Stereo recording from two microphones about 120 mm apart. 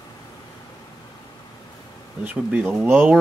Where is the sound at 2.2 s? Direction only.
10° right (ahead or behind).